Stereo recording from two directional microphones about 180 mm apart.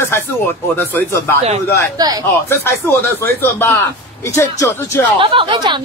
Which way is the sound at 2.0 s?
20° right (ahead or behind).